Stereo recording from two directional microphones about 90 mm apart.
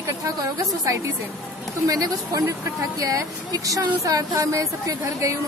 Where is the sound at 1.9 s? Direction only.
45° right (ahead or behind).